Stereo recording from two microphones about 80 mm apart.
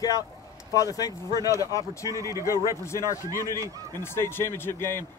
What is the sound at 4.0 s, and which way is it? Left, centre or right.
Speech, left.